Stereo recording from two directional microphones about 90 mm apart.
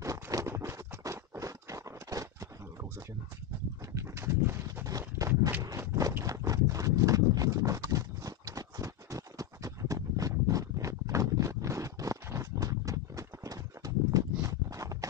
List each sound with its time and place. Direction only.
0.0 s a sound: 40° right (ahead or behind)
0.5 s clip-clop: 35° right (ahead or behind)
3.9 s clip-clop: 30° right (ahead or behind)
6.2 s horse: 40° right (ahead or behind)
14.4 s clip-clop: 40° right (ahead or behind)